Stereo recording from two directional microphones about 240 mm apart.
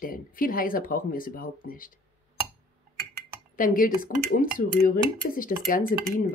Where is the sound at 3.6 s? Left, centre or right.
Left.